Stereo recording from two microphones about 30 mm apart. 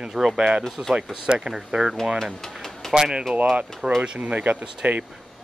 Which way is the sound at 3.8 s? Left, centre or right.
Right.